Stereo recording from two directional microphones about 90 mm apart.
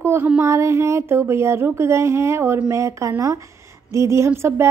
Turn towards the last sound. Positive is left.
turn(degrees=-30)  # may be behind; listen again after turning